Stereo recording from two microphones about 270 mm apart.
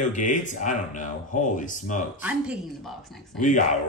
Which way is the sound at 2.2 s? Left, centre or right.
Centre.